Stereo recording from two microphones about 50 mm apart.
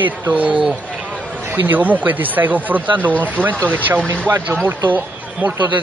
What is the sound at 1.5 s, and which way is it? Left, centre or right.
Speech, right.